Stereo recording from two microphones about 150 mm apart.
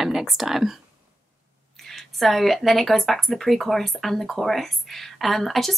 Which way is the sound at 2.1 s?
Centre (ahead or behind).